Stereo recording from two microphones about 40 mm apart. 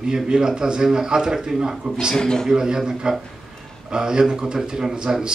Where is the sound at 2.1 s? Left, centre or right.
Centre.